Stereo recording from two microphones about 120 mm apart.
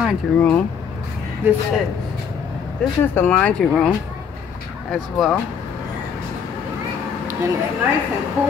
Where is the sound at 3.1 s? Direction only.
10° left (ahead or behind).